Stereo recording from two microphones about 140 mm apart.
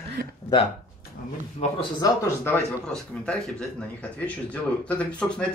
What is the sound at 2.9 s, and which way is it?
Speech, 5° left (ahead or behind).